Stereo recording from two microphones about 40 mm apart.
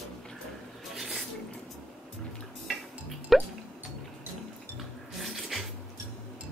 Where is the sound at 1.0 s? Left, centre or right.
Centre.